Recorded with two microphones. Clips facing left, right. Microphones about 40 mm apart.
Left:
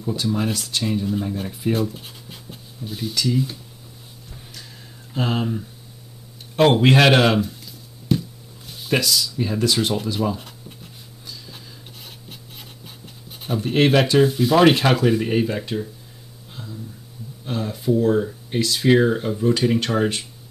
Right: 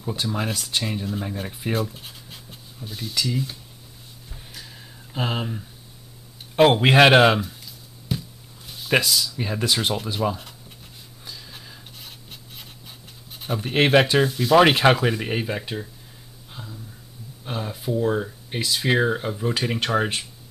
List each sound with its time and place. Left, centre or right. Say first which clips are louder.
0.0 s speech: left 4 dB; centre
4.3 s a sound: even; centre
5.1 s speech: left 4 dB; centre
7.3 s a sound: left 6 dB; centre
8.9 s speech: even; centre
10.3 s a sound: left 4 dB; centre
11.2 s a sound: left 1 dB; centre
12.0 s writing: left 2 dB; centre
13.6 s speech: left 1 dB; centre
14.2 s speech: left 1 dB; centre
14.6 s speech: left 2 dB; centre
17.5 s speech: left 5 dB; centre